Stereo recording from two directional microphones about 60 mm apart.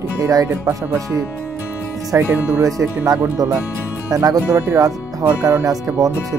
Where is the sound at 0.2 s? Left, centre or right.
Right.